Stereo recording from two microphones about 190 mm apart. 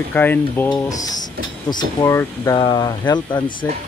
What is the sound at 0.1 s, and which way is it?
Speech, 10° left (ahead or behind).